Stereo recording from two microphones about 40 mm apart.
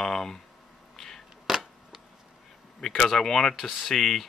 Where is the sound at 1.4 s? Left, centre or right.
Centre.